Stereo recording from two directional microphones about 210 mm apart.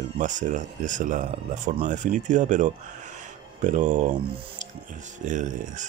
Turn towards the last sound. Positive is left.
turn(degrees=-35)  # may be behind; listen again after turning